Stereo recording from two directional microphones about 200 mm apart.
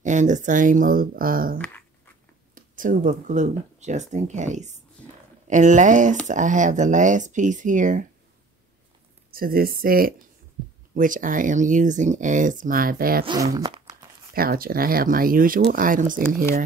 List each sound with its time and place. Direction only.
0.0 s speech: 40° right (ahead or behind)
9.3 s speech: 45° right (ahead or behind)
13.2 s speech: 20° right (ahead or behind)
13.6 s crumpling: 25° right (ahead or behind)
14.3 s speech: 45° right (ahead or behind)